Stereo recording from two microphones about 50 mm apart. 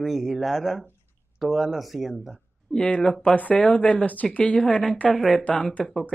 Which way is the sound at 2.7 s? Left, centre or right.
Centre.